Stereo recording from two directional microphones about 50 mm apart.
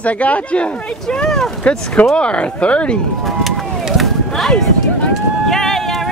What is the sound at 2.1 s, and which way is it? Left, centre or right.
Speech, left.